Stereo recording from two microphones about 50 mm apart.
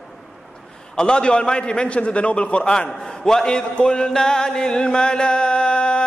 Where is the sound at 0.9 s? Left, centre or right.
Centre.